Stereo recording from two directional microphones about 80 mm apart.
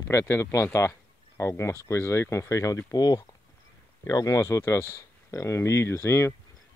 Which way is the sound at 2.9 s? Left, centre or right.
Left.